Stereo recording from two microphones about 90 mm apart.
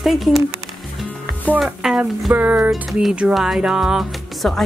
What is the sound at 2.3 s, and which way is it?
Speech, 20° right (ahead or behind).